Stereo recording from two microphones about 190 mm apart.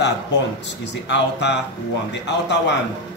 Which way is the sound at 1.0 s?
65° left (ahead or behind).